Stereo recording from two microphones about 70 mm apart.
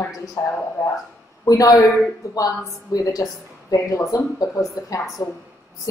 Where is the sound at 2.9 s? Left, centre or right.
Left.